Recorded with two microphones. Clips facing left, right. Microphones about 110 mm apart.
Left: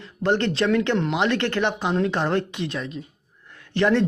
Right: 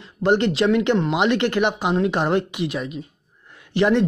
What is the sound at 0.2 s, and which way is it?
Speech, 15° right (ahead or behind).